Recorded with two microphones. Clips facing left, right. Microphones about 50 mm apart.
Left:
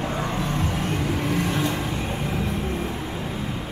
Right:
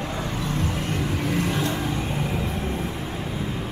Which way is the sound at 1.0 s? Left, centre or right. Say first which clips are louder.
Right 1 dB; centre.